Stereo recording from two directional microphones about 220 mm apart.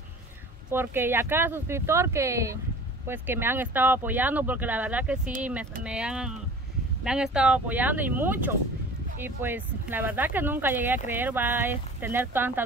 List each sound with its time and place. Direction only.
0.7 s speech: 10° right (ahead or behind)